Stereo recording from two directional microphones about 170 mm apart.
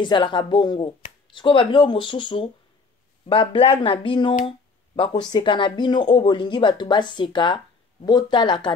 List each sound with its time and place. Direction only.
0.0 s speech: 25° left (ahead or behind)